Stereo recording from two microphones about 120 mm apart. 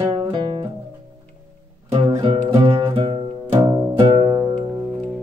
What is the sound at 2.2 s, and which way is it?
Music, 50° right (ahead or behind).